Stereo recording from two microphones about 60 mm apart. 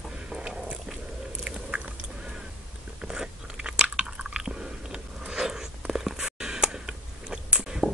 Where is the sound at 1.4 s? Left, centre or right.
Right.